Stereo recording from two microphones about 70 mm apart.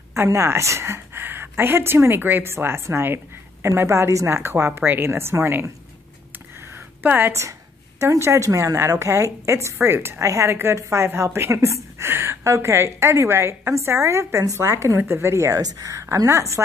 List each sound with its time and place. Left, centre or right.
0.1 s a woman's voice: right
6.6 s a sound: right
8.0 s a woman's voice: right
9.8 s a woman's voice: right
15.0 s a woman's voice: right
15.3 s a woman's voice: right